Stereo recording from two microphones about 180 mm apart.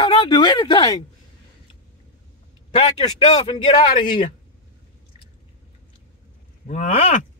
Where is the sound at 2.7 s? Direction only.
35° left (ahead or behind).